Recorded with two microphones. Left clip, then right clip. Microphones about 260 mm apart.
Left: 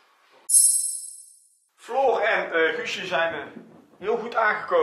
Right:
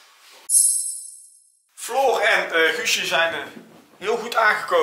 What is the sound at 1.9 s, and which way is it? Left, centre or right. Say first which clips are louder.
Speech: right 3 dB; centre.